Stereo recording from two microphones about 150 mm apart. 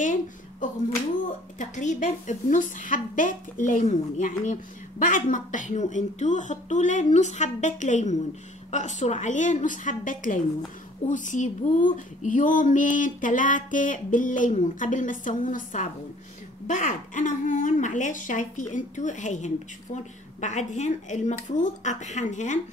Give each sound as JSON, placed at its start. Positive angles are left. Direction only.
{"t": 0.0, "sound": "a woman's voice", "side_deg": 60}